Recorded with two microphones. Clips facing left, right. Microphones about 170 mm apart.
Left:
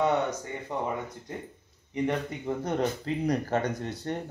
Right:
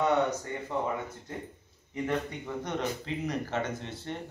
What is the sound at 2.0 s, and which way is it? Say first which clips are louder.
A man's voice: left 2 dB; 30° left (ahead or behind).